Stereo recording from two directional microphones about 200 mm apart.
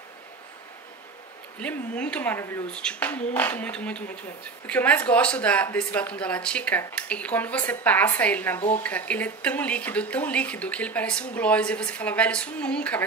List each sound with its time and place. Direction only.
1.6 s speech: 5° left (ahead or behind)
8.5 s speech: 35° left (ahead or behind)
8.8 s speech: 5° left (ahead or behind)